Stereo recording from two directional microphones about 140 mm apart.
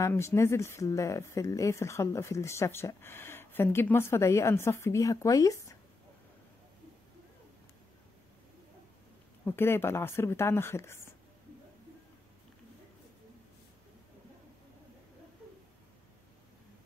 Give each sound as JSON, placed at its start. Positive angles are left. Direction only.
{"t": 0.0, "sound": "speech", "side_deg": 20}
{"t": 9.4, "sound": "speech", "side_deg": 15}